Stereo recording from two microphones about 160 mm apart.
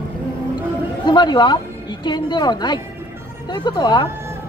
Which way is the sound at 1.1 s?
25° left (ahead or behind).